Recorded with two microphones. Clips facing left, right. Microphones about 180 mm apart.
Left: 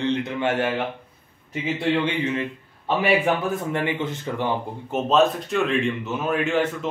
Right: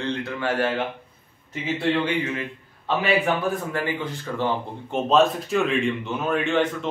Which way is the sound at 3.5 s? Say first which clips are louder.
Left 2 dB; 25° left (ahead or behind).